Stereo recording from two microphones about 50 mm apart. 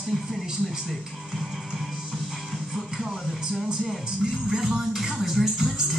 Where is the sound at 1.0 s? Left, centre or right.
Centre.